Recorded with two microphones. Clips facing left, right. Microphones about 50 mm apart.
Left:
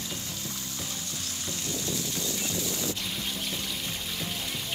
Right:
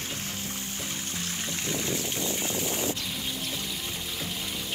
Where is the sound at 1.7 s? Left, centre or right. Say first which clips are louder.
Right 2 dB; right.